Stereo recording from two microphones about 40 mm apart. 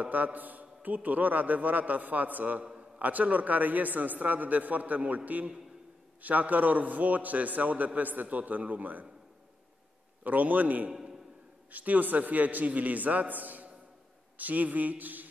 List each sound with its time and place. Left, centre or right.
0.0 s a man's voice: right
2.6 s a sound: right
3.0 s a man's voice: right
10.2 s a man's voice: right
10.9 s a sound: centre
11.7 s a man's voice: right